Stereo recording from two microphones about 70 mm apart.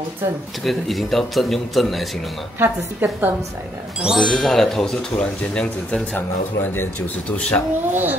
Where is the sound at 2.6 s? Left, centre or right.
Right.